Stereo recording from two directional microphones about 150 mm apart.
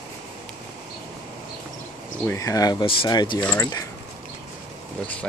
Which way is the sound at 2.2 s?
20° left (ahead or behind).